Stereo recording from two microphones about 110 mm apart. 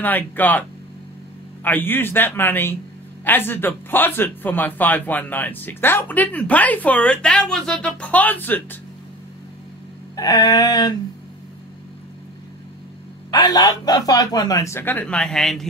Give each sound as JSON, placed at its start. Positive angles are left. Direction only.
{"t": 0.0, "sound": "a man's voice", "side_deg": 15}
{"t": 10.1, "sound": "speech", "side_deg": 35}
{"t": 13.3, "sound": "speech", "side_deg": 40}